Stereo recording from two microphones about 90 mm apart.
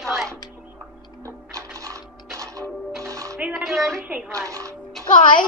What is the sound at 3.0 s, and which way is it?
Music, 35° right (ahead or behind).